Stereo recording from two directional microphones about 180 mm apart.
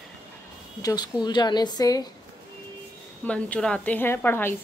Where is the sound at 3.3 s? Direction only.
5° left (ahead or behind).